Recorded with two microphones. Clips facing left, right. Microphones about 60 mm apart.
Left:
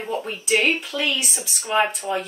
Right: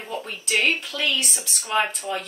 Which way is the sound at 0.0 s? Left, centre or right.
Centre.